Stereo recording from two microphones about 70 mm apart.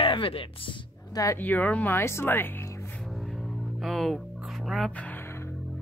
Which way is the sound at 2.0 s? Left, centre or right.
Left.